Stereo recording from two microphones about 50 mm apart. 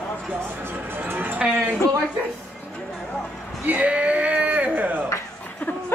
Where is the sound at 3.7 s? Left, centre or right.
Right.